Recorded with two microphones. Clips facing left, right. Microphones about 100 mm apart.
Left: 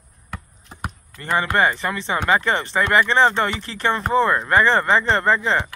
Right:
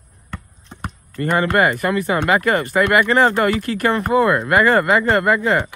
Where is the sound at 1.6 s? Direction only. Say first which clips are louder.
Right 3 dB; centre (ahead or behind).